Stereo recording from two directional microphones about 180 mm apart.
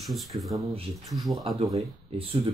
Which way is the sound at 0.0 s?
Centre (ahead or behind).